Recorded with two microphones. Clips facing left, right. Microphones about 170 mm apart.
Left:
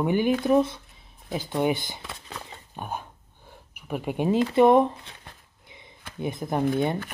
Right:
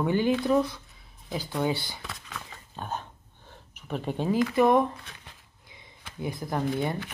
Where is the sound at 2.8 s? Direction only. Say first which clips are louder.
Left 1 dB; 10° left (ahead or behind).